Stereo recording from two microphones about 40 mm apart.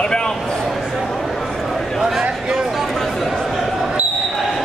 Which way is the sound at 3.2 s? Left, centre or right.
Centre.